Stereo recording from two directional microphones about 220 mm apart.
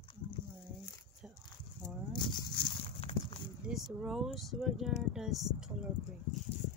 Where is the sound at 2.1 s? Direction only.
20° left (ahead or behind).